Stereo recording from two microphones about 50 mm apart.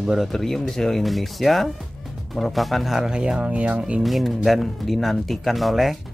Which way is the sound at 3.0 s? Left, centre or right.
Centre.